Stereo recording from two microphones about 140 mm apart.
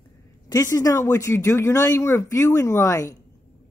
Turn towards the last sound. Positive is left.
turn(degrees=25)  # may be behind; listen again after turning